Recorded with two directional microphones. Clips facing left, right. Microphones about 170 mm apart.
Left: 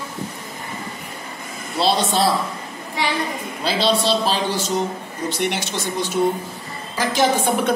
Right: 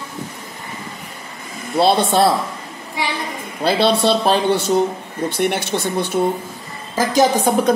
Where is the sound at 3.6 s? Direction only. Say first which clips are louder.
Right 4 dB; 55° right (ahead or behind).